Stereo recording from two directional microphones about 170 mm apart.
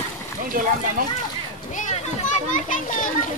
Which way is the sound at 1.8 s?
45° left (ahead or behind).